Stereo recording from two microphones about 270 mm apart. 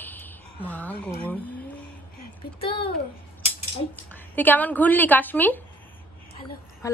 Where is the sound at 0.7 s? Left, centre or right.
Centre.